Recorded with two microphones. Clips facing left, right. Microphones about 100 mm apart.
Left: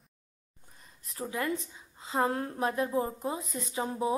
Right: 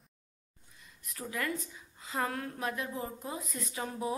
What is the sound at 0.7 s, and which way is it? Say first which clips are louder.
A woman's voice: left 6 dB; 35° left (ahead or behind).